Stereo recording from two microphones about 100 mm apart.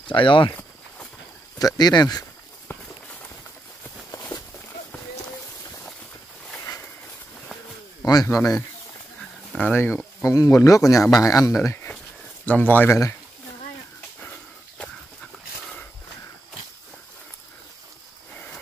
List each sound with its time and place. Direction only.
0.0 s speech: 55° left (ahead or behind)
1.6 s speech: 40° left (ahead or behind)
2.7 s walk: 25° left (ahead or behind)
4.1 s a sound: 30° left (ahead or behind)
8.0 s speech: 35° left (ahead or behind)
9.6 s speech: 15° left (ahead or behind)
10.2 s speech: 35° left (ahead or behind)
12.4 s speech: 15° left (ahead or behind)